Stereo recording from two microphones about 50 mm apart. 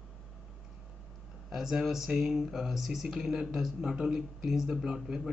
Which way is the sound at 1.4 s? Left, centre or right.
Centre.